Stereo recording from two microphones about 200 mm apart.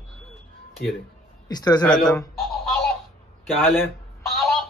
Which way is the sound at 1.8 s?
5° left (ahead or behind).